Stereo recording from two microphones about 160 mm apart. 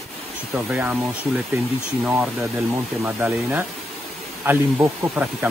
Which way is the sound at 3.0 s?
10° right (ahead or behind).